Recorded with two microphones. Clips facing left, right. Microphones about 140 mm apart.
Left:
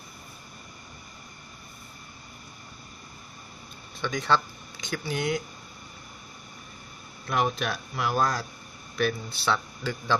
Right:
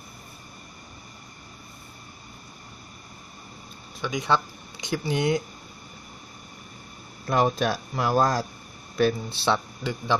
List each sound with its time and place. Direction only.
4.0 s speech: 15° right (ahead or behind)
7.2 s a man's voice: 35° right (ahead or behind)